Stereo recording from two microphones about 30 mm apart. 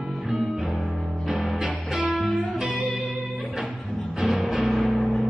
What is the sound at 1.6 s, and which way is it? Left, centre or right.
Music, right.